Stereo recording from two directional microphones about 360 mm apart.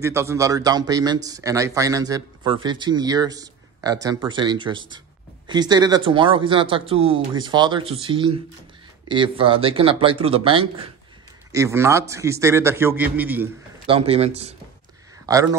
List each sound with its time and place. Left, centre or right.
0.0 s speech: centre
13.9 s speech: centre